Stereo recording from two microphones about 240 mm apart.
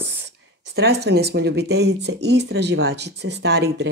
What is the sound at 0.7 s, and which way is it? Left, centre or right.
Speech, right.